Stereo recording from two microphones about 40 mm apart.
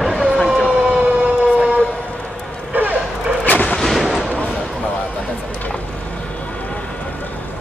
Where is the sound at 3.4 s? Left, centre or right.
Left.